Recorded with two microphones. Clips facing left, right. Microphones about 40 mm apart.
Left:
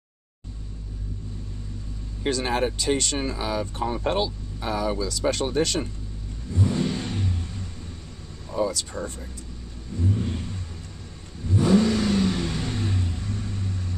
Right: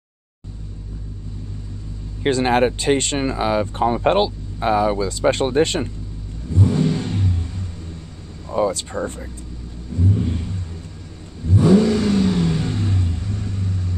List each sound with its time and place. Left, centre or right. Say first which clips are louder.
2.2 s speech: right 8 dB; right
6.5 s vehicle: right 6 dB; centre
8.5 s speech: right 6 dB; right
9.9 s vehicle: right 5 dB; centre